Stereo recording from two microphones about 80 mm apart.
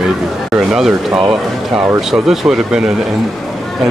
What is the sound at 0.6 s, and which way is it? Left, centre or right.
Speech, centre.